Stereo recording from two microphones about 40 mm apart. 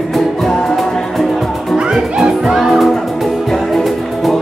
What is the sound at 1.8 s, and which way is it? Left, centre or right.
Music, centre.